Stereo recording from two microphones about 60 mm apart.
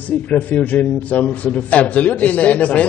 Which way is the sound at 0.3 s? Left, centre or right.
Left.